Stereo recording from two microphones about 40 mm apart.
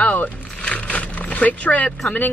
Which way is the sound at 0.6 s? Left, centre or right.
Left.